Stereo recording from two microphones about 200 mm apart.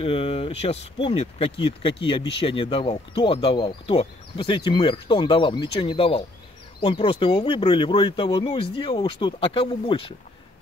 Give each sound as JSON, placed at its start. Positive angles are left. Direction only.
{"t": 0.0, "sound": "speech", "side_deg": 30}